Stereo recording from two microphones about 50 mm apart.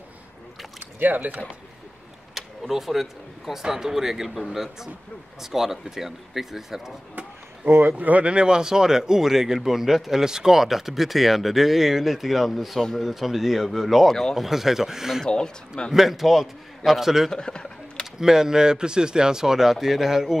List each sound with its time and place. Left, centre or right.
0.9 s speech: right
2.3 s power windows: centre
3.6 s speech: centre
7.7 s speech: right
8.0 s speech: right; by 14.4 s centre
14.4 s speech: centre
15.2 s speech: centre
15.9 s speech: centre
17.3 s a sound: centre
18.2 s speech: centre